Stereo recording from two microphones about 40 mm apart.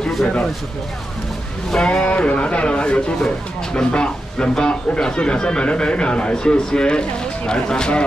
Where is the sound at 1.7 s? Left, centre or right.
Left.